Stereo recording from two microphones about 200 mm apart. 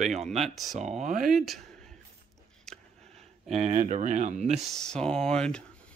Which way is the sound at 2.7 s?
5° left (ahead or behind).